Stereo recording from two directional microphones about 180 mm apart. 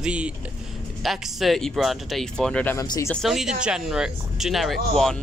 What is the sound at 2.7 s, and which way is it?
Speech, 15° left (ahead or behind).